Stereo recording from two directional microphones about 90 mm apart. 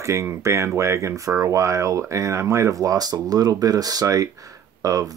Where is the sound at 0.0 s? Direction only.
35° right (ahead or behind).